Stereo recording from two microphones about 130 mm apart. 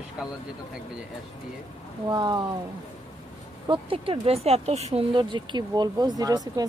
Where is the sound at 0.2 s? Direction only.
5° right (ahead or behind).